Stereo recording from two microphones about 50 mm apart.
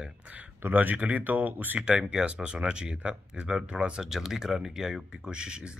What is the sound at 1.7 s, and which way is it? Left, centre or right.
Speech, centre.